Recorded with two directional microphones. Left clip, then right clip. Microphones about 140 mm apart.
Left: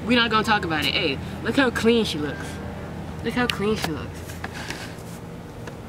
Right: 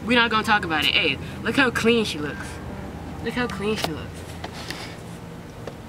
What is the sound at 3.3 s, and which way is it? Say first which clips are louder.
Speech: left 2 dB; 10° left (ahead or behind).